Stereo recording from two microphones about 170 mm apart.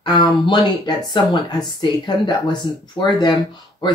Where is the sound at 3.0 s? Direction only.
25° left (ahead or behind).